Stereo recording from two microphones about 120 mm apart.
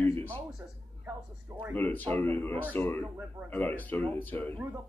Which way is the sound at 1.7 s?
15° left (ahead or behind).